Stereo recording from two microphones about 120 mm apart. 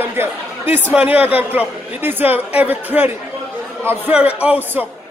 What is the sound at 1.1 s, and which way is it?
Speech, 55° left (ahead or behind).